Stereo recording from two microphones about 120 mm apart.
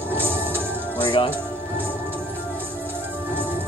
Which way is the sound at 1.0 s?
45° left (ahead or behind).